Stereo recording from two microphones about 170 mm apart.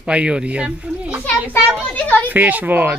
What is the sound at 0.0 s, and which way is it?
A child's voice, 5° right (ahead or behind).